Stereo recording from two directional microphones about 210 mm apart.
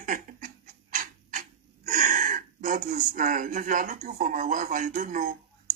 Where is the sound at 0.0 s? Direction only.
40° right (ahead or behind).